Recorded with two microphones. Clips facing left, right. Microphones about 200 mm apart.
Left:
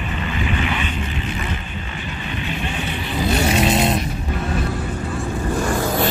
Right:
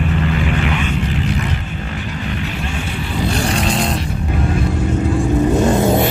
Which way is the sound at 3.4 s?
5° left (ahead or behind).